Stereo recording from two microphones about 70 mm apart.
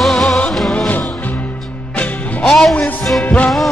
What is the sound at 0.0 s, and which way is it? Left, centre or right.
Music, centre.